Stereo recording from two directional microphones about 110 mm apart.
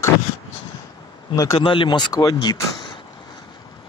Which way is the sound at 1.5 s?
50° left (ahead or behind).